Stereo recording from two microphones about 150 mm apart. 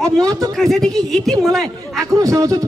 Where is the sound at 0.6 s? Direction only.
Centre (ahead or behind).